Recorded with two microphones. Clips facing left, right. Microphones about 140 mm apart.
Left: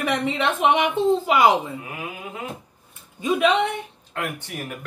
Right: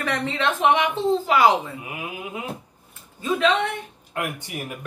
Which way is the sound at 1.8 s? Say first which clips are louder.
Right 1 dB; 15° right (ahead or behind).